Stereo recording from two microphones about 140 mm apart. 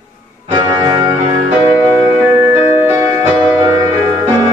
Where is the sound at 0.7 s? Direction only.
25° right (ahead or behind).